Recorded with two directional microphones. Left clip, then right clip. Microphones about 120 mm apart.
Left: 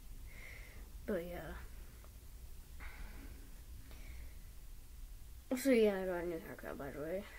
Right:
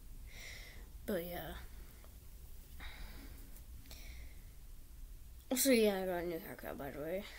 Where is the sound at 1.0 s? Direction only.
25° right (ahead or behind).